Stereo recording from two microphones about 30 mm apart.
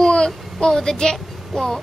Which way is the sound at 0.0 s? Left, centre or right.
Left.